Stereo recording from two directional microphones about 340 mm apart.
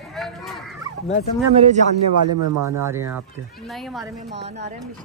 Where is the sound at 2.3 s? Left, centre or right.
Right.